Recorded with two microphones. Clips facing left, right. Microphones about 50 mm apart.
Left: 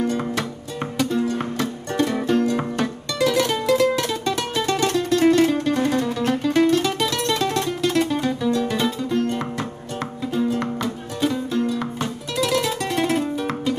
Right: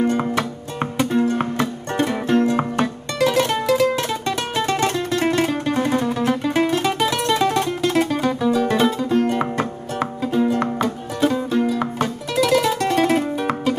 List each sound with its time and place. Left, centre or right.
0.2 s music: right
3.6 s music: centre
3.9 s music: right
8.6 s music: right
10.6 s music: right
11.6 s music: centre